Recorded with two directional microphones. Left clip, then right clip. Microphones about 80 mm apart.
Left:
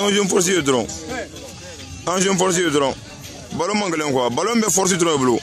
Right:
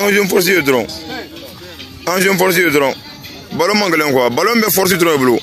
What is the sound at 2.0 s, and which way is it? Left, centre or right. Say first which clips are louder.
Speech: right 6 dB; centre.